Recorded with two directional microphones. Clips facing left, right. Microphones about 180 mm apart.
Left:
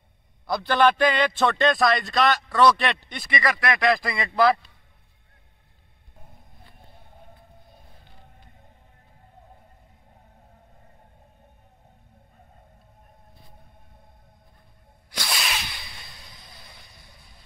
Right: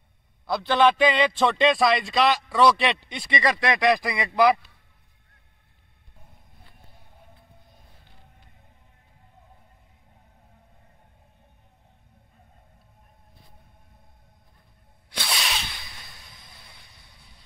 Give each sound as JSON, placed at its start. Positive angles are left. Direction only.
{"t": 0.5, "sound": "a man's voice", "side_deg": 5}
{"t": 1.2, "sound": "a man's voice", "side_deg": -5}
{"t": 3.3, "sound": "speech", "side_deg": -20}
{"t": 15.1, "sound": "a sound", "side_deg": 0}